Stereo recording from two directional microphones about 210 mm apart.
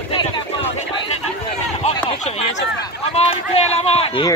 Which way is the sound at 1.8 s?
30° left (ahead or behind).